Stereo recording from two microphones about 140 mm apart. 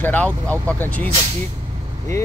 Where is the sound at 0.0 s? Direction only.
10° left (ahead or behind).